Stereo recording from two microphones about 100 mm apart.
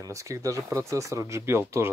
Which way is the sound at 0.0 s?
30° right (ahead or behind).